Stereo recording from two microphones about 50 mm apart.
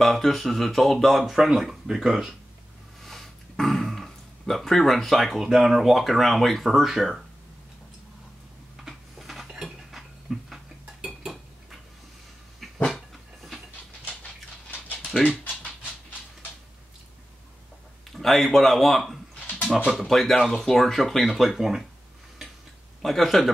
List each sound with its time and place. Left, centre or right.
0.0 s speech: centre
8.8 s a sound: centre
9.6 s cutlery: centre
12.7 s dog: centre
14.7 s dog: left
15.4 s a sound: left
18.1 s speech: centre
23.0 s speech: centre